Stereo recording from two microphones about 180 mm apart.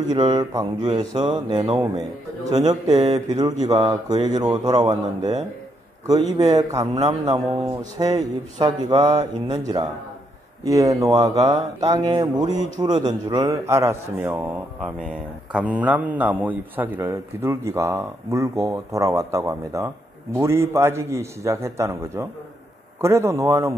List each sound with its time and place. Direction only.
0.0 s speech: 20° right (ahead or behind)
6.9 s a man's voice: 40° right (ahead or behind)
7.2 s a man's voice: 20° right (ahead or behind)
15.5 s a man's voice: 10° right (ahead or behind)